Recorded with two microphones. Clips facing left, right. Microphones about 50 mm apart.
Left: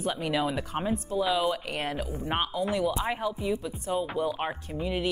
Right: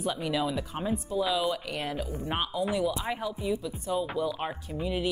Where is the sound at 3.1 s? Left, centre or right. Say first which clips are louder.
Left 2 dB; centre.